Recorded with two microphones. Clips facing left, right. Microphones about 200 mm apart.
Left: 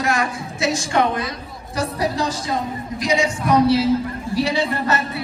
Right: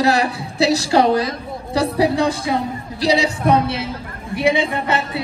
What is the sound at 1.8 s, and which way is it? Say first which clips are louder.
Speech: right 5 dB; 65° right (ahead or behind).